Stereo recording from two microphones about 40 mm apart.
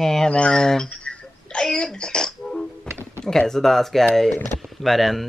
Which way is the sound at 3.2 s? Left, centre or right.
Centre.